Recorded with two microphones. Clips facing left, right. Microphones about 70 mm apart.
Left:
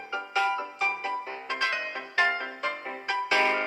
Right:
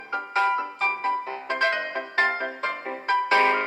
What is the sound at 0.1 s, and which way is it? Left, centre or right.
Music, right.